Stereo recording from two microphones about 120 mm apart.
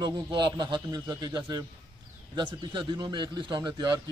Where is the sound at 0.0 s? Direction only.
40° right (ahead or behind).